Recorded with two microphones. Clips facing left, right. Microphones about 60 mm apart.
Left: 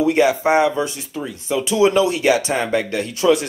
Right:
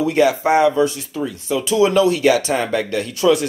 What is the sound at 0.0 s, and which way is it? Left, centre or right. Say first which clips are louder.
Speech: even; left.